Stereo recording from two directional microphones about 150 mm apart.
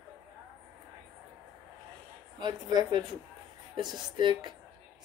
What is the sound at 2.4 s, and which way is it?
Speech, 30° right (ahead or behind).